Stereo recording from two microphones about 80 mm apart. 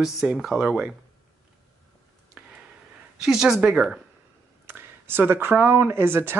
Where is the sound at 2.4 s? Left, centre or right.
Centre.